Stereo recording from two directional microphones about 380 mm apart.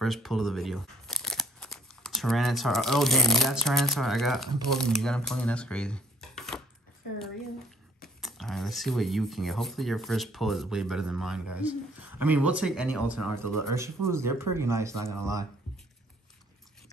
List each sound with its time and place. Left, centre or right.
0.0 s speech: centre
8.0 s speech: centre